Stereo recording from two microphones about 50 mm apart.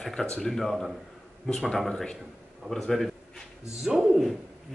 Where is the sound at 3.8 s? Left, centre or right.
Centre.